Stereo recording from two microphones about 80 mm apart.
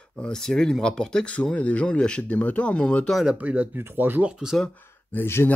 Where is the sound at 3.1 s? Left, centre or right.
Centre.